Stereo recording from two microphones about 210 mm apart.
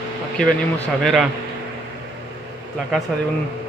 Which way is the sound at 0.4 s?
Centre (ahead or behind).